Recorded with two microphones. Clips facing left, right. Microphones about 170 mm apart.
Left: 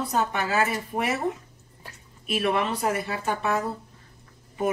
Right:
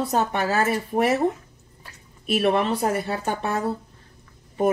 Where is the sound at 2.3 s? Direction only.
35° right (ahead or behind).